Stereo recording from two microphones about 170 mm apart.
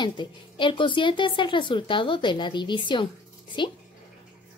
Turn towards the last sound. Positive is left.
turn(degrees=30)  # may be behind; listen again after turning